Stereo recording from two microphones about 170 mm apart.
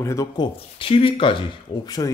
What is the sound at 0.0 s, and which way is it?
Speech, 20° left (ahead or behind).